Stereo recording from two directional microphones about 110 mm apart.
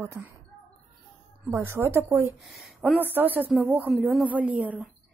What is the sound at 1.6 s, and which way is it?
Speech, 25° right (ahead or behind).